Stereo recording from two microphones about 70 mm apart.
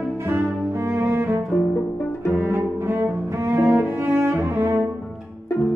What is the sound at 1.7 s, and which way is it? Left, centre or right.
Music, left.